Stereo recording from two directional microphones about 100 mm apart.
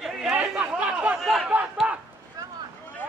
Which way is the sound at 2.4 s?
40° right (ahead or behind).